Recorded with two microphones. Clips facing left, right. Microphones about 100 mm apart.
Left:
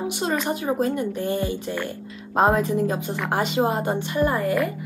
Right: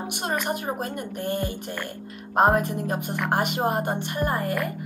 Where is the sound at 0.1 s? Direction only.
55° right (ahead or behind).